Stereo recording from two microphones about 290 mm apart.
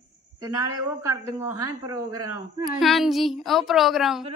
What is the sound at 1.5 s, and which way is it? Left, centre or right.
Speech, centre.